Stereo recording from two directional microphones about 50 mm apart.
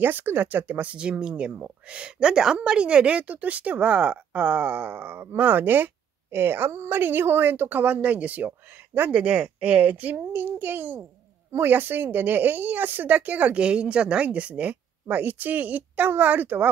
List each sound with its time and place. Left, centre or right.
0.0 s a woman's voice: right
0.9 s a woman's voice: centre; by 10.2 s right
10.3 s a child's voice: right
13.6 s a woman's voice: right